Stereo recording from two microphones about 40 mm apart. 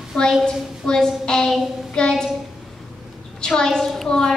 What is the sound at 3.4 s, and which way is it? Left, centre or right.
Speech, centre.